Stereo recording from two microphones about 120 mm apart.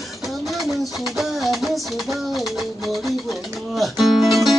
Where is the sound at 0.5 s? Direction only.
Centre (ahead or behind).